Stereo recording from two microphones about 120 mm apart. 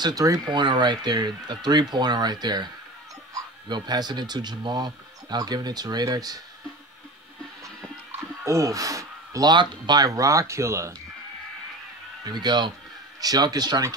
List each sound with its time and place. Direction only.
0.0 s speech: 30° right (ahead or behind)
8.5 s speech: 25° right (ahead or behind)
12.3 s speech: 35° right (ahead or behind)